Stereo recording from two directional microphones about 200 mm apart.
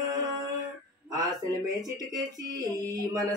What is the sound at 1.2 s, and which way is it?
Speech, 20° right (ahead or behind).